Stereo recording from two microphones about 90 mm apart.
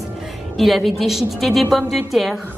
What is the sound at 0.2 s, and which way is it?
A woman's voice, centre (ahead or behind).